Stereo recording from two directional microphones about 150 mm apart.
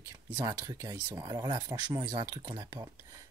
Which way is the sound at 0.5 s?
25° right (ahead or behind).